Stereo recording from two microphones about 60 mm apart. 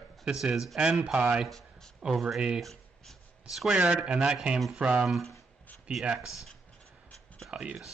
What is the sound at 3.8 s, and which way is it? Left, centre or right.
Speech, centre.